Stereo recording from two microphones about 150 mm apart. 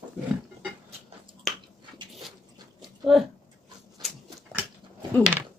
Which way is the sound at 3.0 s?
Centre (ahead or behind).